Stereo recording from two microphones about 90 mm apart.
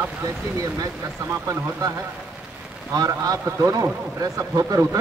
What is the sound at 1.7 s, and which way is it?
Speech, 40° right (ahead or behind).